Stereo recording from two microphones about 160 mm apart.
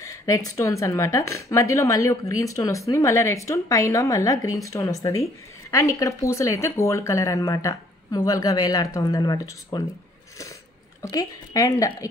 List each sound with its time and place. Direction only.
0.0 s a woman's voice: 20° left (ahead or behind)
11.0 s a woman's voice: 20° left (ahead or behind)